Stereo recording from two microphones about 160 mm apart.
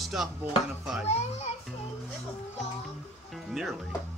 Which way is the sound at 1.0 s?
40° left (ahead or behind).